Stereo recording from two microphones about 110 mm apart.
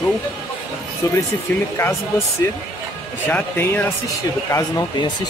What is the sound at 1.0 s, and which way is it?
Speech, 35° left (ahead or behind).